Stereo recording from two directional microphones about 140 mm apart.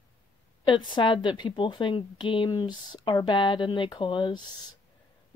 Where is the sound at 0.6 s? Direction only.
35° left (ahead or behind).